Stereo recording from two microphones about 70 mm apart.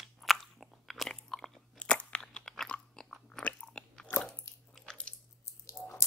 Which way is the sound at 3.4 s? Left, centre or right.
Centre.